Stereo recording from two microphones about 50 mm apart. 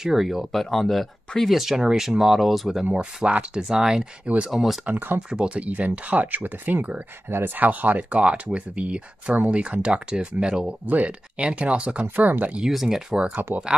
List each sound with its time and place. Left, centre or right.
0.0 s speech: centre
2.8 s speech: centre
4.8 s speech: right
5.3 s speech: right
7.2 s speech: right
7.5 s speech: right; by 10.7 s centre
10.9 s speech: right
12.2 s speech: right
12.7 s speech: centre
13.5 s speech: right